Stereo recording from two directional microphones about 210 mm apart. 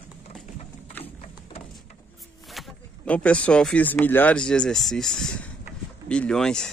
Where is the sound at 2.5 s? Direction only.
5° left (ahead or behind).